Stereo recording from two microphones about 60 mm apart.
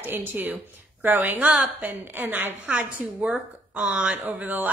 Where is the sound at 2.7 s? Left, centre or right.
Right.